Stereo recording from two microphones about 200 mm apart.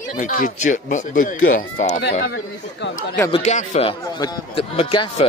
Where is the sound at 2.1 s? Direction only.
50° left (ahead or behind).